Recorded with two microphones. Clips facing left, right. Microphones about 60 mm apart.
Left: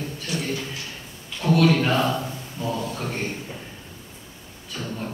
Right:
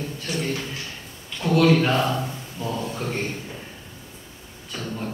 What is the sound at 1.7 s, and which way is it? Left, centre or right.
Speech, centre.